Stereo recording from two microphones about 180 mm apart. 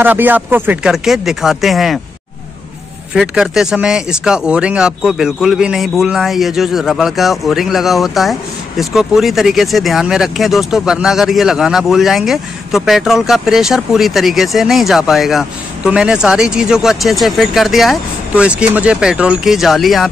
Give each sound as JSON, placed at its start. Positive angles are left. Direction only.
{"t": 0.0, "sound": "speech", "side_deg": -10}
{"t": 3.2, "sound": "speech", "side_deg": -5}